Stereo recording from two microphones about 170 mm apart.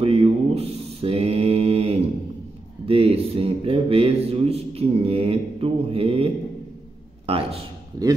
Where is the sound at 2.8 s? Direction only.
35° right (ahead or behind).